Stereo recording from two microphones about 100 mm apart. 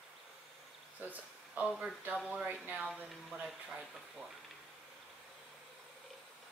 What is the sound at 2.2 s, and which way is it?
Speech, 15° right (ahead or behind).